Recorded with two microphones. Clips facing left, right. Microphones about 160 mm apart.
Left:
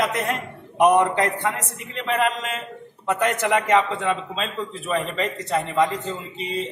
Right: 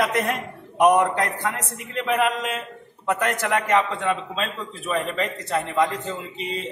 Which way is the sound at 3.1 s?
Centre (ahead or behind).